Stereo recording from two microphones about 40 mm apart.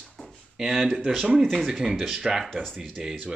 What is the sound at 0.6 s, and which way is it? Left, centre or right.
Speech, centre.